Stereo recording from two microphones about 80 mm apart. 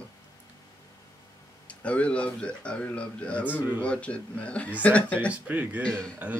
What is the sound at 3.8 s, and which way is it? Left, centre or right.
A man's voice, centre.